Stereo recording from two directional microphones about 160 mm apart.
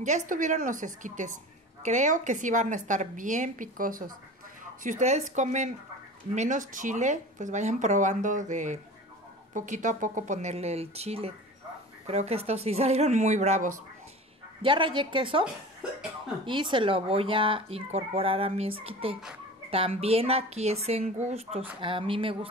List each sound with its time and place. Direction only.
0.0 s speech: 50° right (ahead or behind)
4.8 s speech: 50° right (ahead or behind)
14.6 s speech: 30° right (ahead or behind)
16.4 s speech: 30° right (ahead or behind)